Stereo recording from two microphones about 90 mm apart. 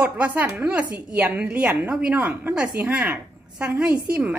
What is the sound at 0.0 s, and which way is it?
A woman's voice, 15° right (ahead or behind).